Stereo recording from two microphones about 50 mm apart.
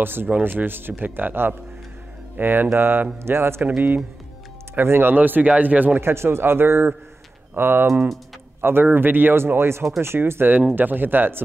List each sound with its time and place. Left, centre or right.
0.0 s speech: right
0.3 s speech: right
3.3 s speech: right
4.7 s speech: right
5.9 s speech: right
9.5 s speech: right
10.7 s speech: right